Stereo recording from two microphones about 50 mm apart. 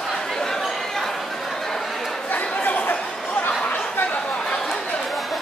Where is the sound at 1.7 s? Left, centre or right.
Centre.